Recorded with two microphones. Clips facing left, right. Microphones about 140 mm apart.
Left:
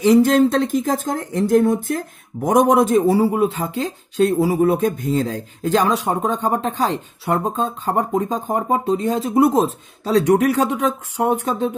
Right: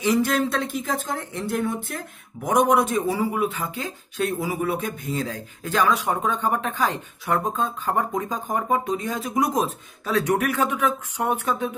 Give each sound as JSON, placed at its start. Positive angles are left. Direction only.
{"t": 0.0, "sound": "speech", "side_deg": 40}